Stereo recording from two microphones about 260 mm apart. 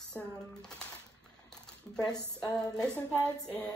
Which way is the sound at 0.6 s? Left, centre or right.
Centre.